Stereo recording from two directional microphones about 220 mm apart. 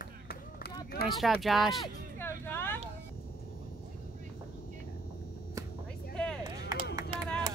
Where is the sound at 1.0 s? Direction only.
Centre (ahead or behind).